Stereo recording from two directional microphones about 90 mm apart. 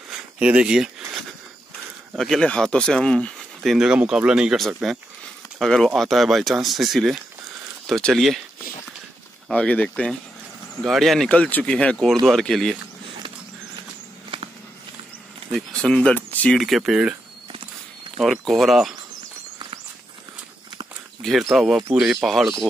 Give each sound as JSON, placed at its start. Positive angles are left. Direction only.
{"t": 0.1, "sound": "a sound", "side_deg": -10}
{"t": 2.1, "sound": "speech", "side_deg": 5}
{"t": 3.7, "sound": "speech", "side_deg": -10}
{"t": 4.8, "sound": "speech", "side_deg": 0}
{"t": 9.5, "sound": "speech", "side_deg": 15}
{"t": 10.8, "sound": "speech", "side_deg": 0}
{"t": 11.3, "sound": "speech", "side_deg": 15}
{"t": 15.5, "sound": "speech", "side_deg": 10}
{"t": 16.2, "sound": "a sound", "side_deg": 20}
{"t": 16.5, "sound": "speech", "side_deg": 0}
{"t": 18.1, "sound": "speech", "side_deg": 0}
{"t": 21.2, "sound": "speech", "side_deg": 0}